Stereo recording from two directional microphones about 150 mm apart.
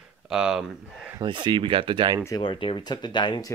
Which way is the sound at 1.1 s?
30° right (ahead or behind).